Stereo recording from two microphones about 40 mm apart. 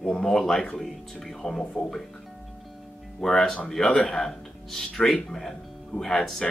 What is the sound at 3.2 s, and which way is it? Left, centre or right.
Speech, centre.